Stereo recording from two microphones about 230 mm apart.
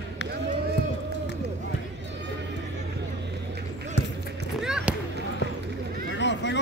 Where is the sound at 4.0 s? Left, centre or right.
Left.